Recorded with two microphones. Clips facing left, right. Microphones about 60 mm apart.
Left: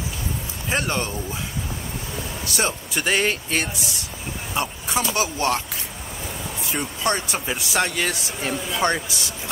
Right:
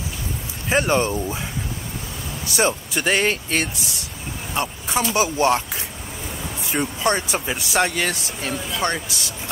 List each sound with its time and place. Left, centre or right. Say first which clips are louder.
0.7 s speech: right 6 dB; centre
2.4 s speech: right 5 dB; centre
6.7 s speech: right 3 dB; centre
8.1 s speech: even; centre